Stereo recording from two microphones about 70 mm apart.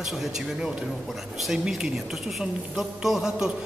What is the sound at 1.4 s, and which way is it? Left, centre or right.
A woman's voice, centre.